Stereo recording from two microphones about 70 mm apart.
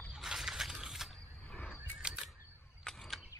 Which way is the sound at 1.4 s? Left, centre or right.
Left.